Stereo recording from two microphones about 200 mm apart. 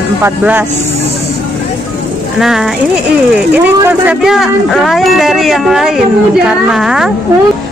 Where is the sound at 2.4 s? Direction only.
Centre (ahead or behind).